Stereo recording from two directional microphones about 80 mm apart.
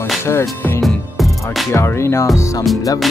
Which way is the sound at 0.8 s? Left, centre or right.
Centre.